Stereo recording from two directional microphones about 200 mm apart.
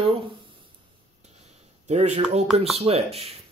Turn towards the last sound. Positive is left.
turn(degrees=-30)  # may be behind; listen again after turning